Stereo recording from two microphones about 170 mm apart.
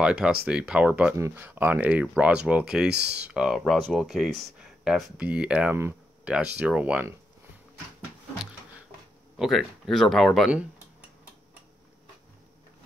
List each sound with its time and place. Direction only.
0.0 s speech: 5° right (ahead or behind)
2.9 s speech: 75° right (ahead or behind)
3.2 s speech: 5° right (ahead or behind)
9.4 s speech: centre (ahead or behind)